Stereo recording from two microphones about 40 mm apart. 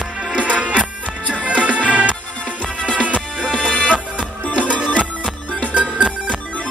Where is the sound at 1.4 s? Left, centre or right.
Left.